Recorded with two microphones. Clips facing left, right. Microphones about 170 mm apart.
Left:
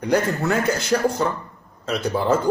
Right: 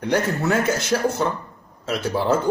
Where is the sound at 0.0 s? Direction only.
Centre (ahead or behind).